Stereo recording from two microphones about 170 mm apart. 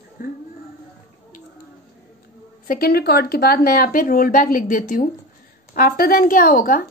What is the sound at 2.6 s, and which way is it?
A woman's voice, 65° left (ahead or behind).